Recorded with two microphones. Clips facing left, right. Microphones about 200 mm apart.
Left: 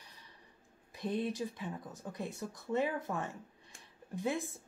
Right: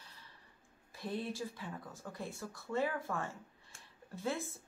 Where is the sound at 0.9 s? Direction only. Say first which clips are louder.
Left 4 dB; 20° left (ahead or behind).